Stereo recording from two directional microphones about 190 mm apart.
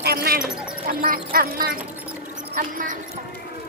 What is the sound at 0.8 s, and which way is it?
Speech, 50° right (ahead or behind).